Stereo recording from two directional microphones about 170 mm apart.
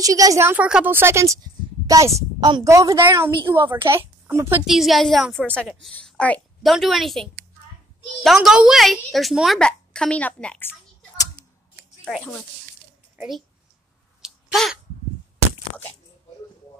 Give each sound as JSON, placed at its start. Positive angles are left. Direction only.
{"t": 0.0, "sound": "a woman's voice", "side_deg": -20}
{"t": 14.2, "sound": "sneeze", "side_deg": 0}